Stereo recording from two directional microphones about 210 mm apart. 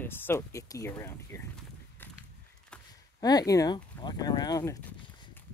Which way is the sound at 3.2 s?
20° left (ahead or behind).